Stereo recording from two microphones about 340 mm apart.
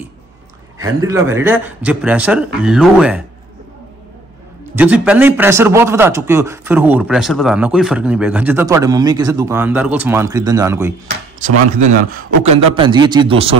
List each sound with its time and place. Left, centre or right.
0.7 s a man's voice: centre
4.7 s a man's voice: centre
12.1 s a man's voice: centre